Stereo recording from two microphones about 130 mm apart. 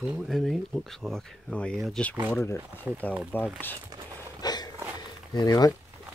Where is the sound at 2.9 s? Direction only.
10° right (ahead or behind).